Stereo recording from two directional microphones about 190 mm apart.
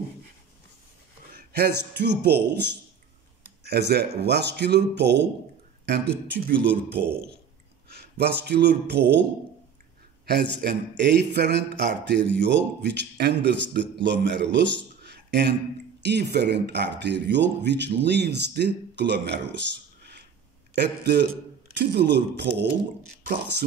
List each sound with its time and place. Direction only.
1.3 s speech: 55° right (ahead or behind)
6.4 s speech: 60° right (ahead or behind)
10.2 s speech: 60° right (ahead or behind)